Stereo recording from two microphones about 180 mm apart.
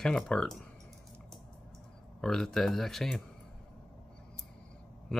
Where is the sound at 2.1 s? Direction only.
Centre (ahead or behind).